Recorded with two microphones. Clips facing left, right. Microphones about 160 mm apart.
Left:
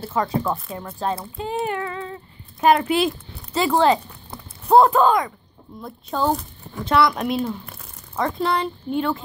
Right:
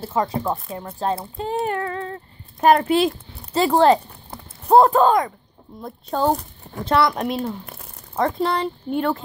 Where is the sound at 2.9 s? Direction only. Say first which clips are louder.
Right 2 dB; 30° right (ahead or behind).